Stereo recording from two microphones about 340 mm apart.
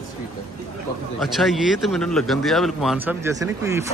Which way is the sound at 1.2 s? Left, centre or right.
Centre.